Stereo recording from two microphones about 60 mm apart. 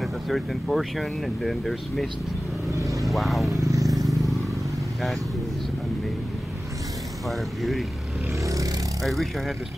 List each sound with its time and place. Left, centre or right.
0.0 s speech: centre
2.7 s vehicle: right
3.0 s speech: centre
3.6 s vehicle: right
3.9 s vehicle: centre
7.2 s speech: centre
9.0 s speech: centre